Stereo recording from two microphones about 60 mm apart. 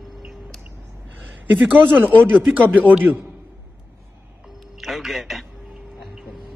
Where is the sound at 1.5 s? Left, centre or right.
Right.